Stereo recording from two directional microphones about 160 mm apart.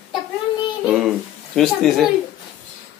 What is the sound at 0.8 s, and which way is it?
Child singing, 5° right (ahead or behind).